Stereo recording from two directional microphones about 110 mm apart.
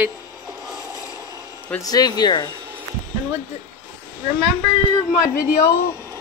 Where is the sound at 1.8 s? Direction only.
35° left (ahead or behind).